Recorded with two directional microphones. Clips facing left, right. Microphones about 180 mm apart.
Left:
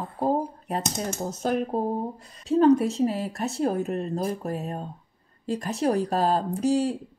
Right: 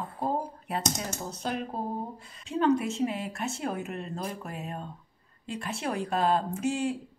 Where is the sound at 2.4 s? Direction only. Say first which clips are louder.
Left 7 dB; 40° left (ahead or behind).